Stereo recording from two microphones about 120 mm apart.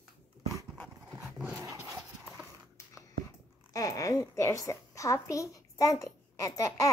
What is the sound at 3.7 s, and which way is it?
A woman's voice, 30° left (ahead or behind).